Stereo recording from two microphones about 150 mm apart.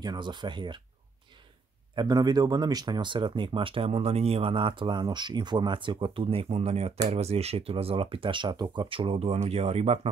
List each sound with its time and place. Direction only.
0.0 s speech: 30° right (ahead or behind)
2.0 s speech: 25° right (ahead or behind); by 9.9 s 45° right (ahead or behind)